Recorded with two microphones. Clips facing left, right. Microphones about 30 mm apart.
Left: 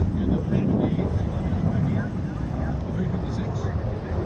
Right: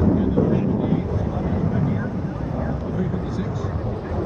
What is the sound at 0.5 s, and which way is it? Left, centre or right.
Vehicle, centre.